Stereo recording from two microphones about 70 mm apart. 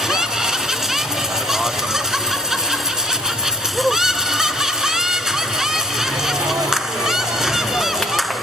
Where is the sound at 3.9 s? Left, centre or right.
Centre.